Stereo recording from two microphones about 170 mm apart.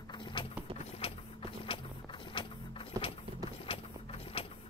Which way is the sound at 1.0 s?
35° left (ahead or behind).